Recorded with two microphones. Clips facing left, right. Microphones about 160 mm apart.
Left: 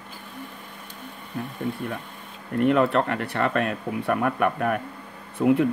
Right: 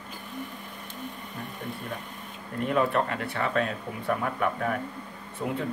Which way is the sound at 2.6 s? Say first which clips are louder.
Left 5 dB; 70° left (ahead or behind).